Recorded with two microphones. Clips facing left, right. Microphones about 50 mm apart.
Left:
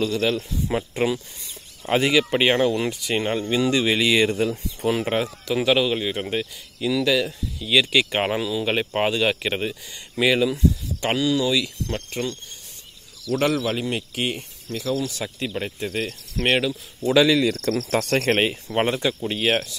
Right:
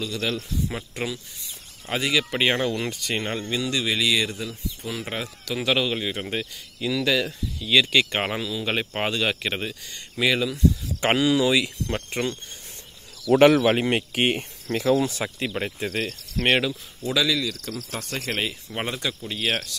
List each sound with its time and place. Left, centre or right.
0.0 s speech: centre; by 5.0 s left
5.0 s speech: centre
5.7 s speech: centre
11.0 s speech: right
13.4 s speech: right
13.7 s speech: right
15.0 s speech: right
15.3 s speech: centre
17.0 s speech: left
17.6 s cricket: left
18.8 s speech: centre